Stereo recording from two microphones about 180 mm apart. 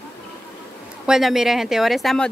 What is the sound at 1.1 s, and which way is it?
Speech, centre (ahead or behind).